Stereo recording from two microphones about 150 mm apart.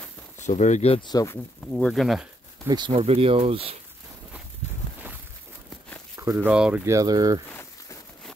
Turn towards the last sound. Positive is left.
turn(degrees=15)  # may be behind; listen again after turning